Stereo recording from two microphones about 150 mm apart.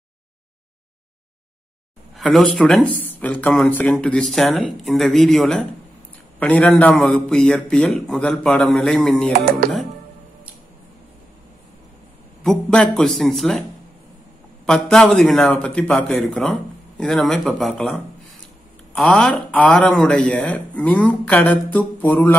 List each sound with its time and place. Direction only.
2.1 s speech: centre (ahead or behind)
9.3 s music: 70° right (ahead or behind)
12.4 s speech: 5° left (ahead or behind)
14.7 s speech: 5° left (ahead or behind)